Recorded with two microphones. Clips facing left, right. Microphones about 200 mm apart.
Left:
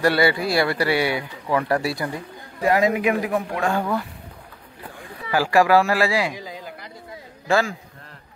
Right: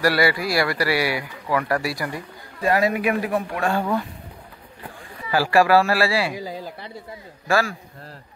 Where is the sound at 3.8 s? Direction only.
10° right (ahead or behind).